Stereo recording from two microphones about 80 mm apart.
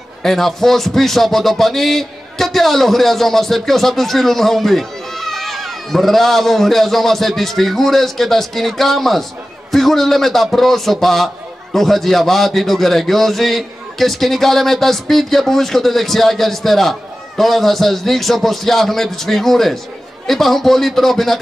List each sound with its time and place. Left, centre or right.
0.2 s speech: centre